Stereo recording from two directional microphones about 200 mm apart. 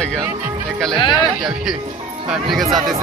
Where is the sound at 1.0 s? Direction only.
20° left (ahead or behind).